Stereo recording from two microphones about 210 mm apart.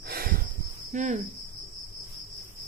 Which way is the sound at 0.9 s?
35° right (ahead or behind).